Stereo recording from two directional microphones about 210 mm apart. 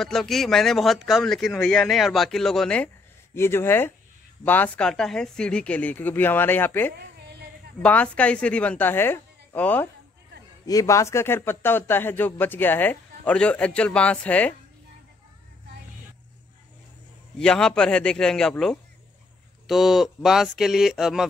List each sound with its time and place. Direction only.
0.0 s speech: centre (ahead or behind)
7.0 s a sound: 50° right (ahead or behind)
7.8 s speech: 5° left (ahead or behind)
17.4 s speech: 5° left (ahead or behind)